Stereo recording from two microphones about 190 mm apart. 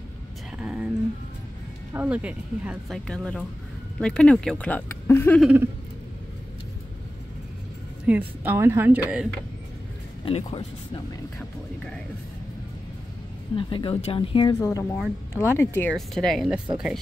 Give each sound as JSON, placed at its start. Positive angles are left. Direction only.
{"t": 0.6, "sound": "a sound", "side_deg": -5}
{"t": 2.0, "sound": "speech", "side_deg": -5}
{"t": 5.4, "sound": "speech", "side_deg": -10}
{"t": 8.1, "sound": "speech", "side_deg": -10}
{"t": 10.2, "sound": "speech", "side_deg": 30}
{"t": 13.6, "sound": "speech", "side_deg": 25}
{"t": 14.6, "sound": "speech", "side_deg": 15}